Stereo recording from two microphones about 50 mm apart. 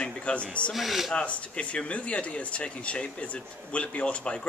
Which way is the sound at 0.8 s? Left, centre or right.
Centre.